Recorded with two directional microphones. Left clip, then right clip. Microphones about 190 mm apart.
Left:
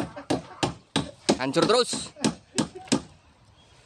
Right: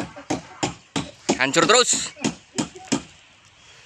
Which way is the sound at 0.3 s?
20° left (ahead or behind).